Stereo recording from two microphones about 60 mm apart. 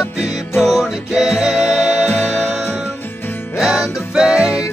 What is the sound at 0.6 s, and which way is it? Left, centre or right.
Music, centre.